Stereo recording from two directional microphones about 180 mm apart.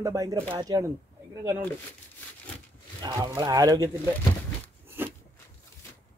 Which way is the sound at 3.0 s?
20° right (ahead or behind).